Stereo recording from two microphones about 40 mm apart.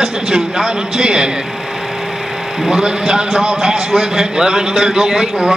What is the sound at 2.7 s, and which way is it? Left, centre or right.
A man's voice, right.